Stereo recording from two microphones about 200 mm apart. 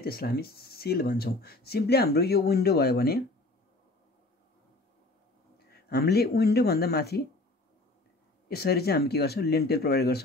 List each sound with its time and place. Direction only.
0.0 s speech: 50° left (ahead or behind)
5.7 s speech: 50° left (ahead or behind)
8.5 s speech: 50° left (ahead or behind)